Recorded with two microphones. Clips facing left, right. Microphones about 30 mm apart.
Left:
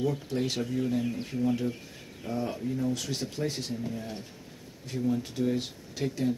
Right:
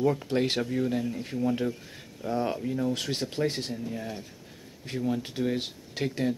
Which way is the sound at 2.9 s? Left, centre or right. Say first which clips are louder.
Right 2 dB; right.